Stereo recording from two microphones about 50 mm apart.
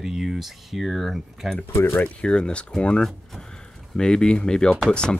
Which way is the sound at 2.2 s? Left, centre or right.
Centre.